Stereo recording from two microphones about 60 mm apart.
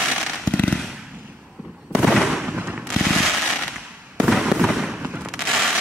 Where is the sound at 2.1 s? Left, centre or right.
Centre.